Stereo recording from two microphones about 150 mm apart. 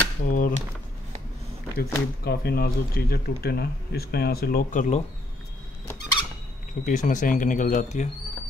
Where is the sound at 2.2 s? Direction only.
90° left; by 5.0 s 60° left (ahead or behind).